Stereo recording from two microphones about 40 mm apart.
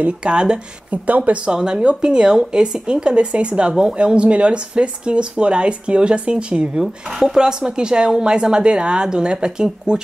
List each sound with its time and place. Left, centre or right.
0.2 s speech: right
1.0 s speech: right
1.4 s speech: centre
6.8 s speech: centre